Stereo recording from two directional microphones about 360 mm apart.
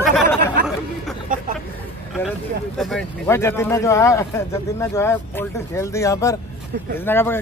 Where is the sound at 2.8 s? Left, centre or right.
Centre.